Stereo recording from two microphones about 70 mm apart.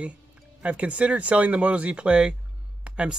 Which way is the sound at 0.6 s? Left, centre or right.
Centre.